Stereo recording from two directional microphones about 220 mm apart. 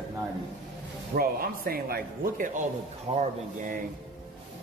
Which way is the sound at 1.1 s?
40° right (ahead or behind).